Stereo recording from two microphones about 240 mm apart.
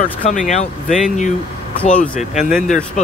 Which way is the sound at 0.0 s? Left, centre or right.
Left.